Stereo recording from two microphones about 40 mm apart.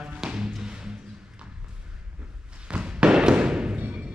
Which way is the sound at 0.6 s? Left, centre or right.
Centre.